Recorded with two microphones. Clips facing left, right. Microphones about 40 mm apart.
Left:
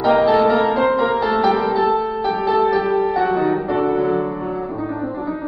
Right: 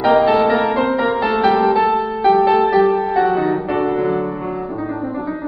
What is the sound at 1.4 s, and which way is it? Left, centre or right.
Music, right.